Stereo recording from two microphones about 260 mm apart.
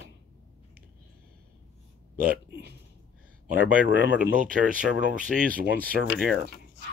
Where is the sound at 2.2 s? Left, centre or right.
Right.